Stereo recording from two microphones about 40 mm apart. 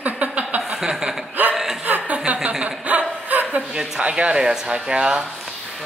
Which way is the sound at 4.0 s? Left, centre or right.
Right.